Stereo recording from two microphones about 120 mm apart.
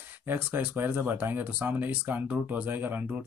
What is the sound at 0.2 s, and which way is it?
Speech, 15° right (ahead or behind).